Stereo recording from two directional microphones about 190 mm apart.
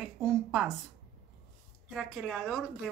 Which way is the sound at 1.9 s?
Centre (ahead or behind).